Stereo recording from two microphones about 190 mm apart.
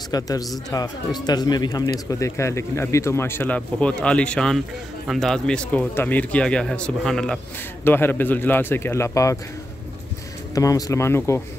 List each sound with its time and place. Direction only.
0.1 s speech: 20° left (ahead or behind)
10.5 s speech: 20° left (ahead or behind)